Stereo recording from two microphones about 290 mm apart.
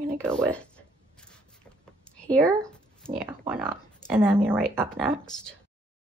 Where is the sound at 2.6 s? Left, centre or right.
Centre.